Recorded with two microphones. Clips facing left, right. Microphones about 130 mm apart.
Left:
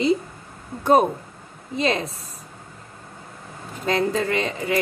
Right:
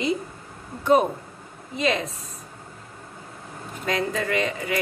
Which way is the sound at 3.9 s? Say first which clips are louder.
Left 4 dB; 30° left (ahead or behind).